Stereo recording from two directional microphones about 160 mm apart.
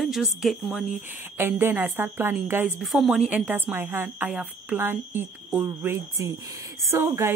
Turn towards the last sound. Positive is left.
turn(degrees=-15)  # may be behind; listen again after turning